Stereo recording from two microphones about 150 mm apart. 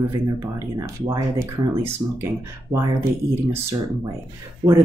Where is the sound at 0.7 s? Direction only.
20° right (ahead or behind).